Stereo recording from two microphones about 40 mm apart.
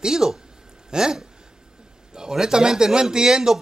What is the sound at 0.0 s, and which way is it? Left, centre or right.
Speech, centre.